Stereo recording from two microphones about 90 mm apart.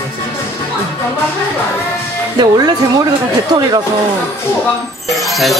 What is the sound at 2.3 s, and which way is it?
Speech, 50° right (ahead or behind).